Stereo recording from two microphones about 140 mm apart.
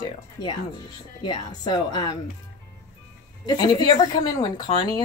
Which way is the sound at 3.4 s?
30° left (ahead or behind).